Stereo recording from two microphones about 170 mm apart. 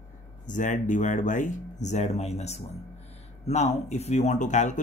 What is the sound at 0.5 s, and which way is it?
Speech, 50° left (ahead or behind).